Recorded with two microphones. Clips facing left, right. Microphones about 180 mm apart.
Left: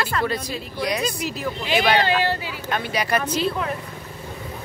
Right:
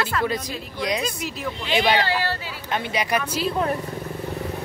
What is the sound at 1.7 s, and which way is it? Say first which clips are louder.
Speech: left 1 dB; 20° right (ahead or behind).